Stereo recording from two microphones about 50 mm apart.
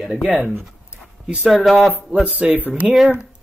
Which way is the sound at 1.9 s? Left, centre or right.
Right.